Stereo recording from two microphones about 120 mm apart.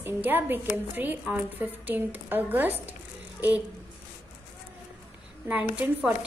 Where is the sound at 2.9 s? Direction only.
15° right (ahead or behind).